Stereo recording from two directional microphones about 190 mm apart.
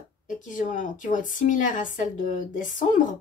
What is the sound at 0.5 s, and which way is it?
Speech, 45° left (ahead or behind).